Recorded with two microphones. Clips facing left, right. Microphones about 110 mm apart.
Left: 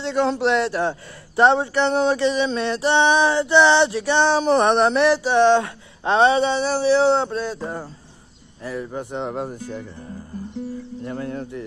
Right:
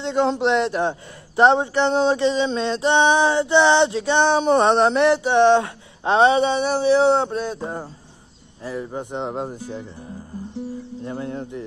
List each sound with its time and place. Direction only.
0.0 s a man's voice: 20° right (ahead or behind)
11.1 s a man's voice: 25° right (ahead or behind)